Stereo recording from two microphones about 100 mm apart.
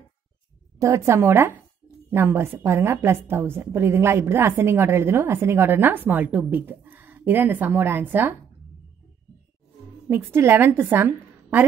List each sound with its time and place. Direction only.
0.7 s a woman's voice: 30° right (ahead or behind)
10.0 s a woman's voice: 25° right (ahead or behind)